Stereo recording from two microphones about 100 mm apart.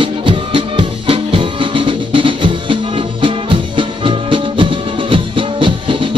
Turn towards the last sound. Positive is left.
turn(degrees=-60)  # may be behind; listen again after turning